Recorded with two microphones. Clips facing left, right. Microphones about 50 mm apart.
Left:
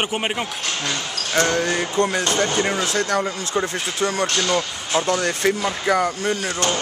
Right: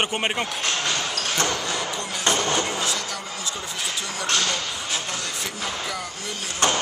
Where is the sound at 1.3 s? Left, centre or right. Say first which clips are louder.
Left 9 dB; left.